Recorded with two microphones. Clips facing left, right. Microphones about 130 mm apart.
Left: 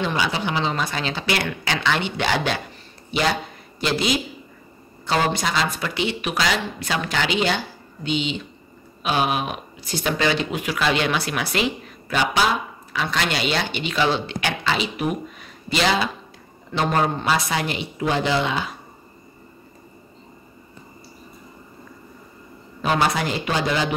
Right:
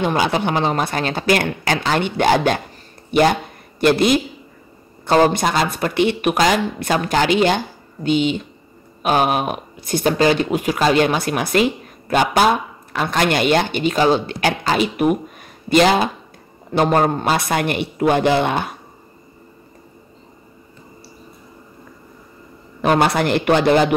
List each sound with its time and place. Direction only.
0.0 s a man's voice: 50° right (ahead or behind)
22.8 s speech: 60° right (ahead or behind)